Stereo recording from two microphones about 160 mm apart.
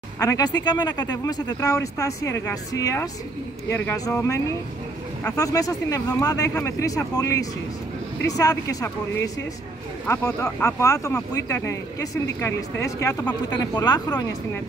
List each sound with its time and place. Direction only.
0.2 s speech: 20° left (ahead or behind)
13.7 s speech: 25° left (ahead or behind)